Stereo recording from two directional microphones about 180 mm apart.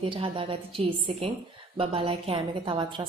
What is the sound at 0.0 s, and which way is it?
A woman's voice, 30° right (ahead or behind).